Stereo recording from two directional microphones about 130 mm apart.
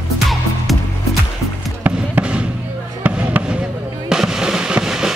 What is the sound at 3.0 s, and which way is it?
Music, 10° right (ahead or behind).